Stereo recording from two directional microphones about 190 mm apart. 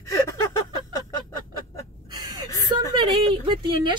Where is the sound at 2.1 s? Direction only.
20° right (ahead or behind).